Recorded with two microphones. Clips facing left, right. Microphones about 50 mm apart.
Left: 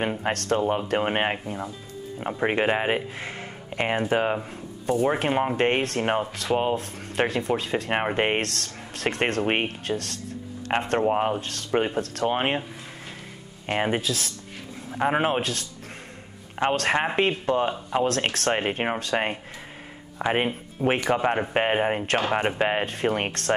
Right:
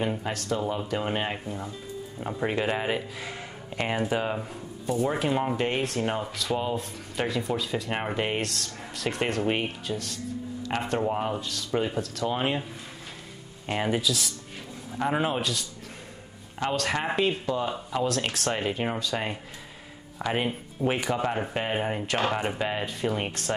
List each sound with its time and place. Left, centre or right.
0.2 s speech: left
2.4 s speech: left
10.7 s speech: left
13.7 s speech: left
16.6 s speech: left
20.2 s speech: left